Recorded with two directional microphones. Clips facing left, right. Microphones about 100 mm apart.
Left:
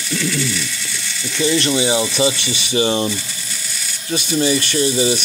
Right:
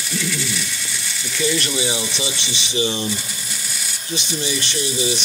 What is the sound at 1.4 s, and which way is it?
Speech, 35° left (ahead or behind).